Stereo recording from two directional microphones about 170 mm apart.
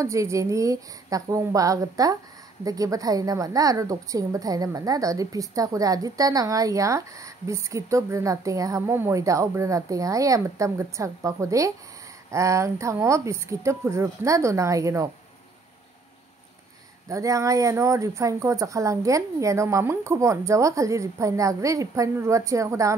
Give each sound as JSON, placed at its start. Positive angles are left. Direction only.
{"t": 0.0, "sound": "a woman's voice", "side_deg": -15}
{"t": 17.1, "sound": "speech", "side_deg": -20}